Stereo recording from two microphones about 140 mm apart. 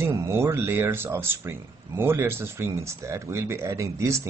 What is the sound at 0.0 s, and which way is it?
Speech, 20° right (ahead or behind).